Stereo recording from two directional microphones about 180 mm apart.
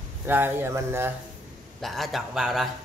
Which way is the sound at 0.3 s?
10° right (ahead or behind).